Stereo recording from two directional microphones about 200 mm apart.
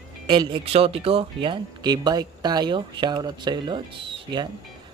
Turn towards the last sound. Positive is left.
turn(degrees=-25)  # may be behind; listen again after turning